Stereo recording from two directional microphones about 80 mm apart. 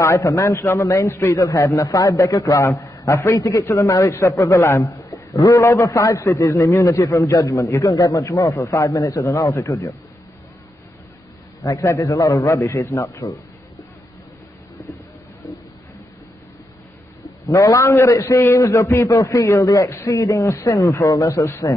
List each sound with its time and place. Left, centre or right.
0.0 s a man's voice: left
11.6 s a man's voice: left
17.5 s a man's voice: left